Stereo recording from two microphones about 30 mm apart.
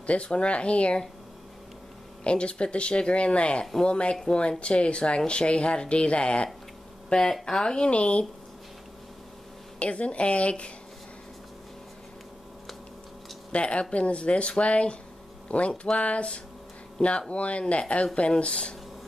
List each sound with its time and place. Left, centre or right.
0.0 s speech: left
2.2 s speech: left
7.1 s speech: left
7.9 s speech: left
9.8 s a woman's voice: left
13.5 s a woman's voice: left